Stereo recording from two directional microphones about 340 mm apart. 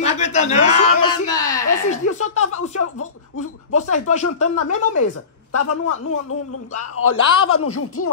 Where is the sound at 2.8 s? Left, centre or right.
Left.